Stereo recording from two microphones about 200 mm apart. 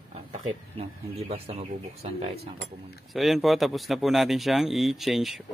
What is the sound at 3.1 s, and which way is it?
Speech, centre (ahead or behind).